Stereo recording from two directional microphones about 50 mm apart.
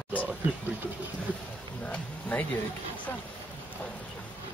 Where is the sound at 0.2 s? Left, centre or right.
Right.